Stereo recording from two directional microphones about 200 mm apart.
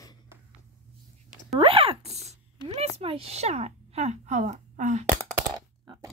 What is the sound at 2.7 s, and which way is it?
A woman's voice, 30° right (ahead or behind).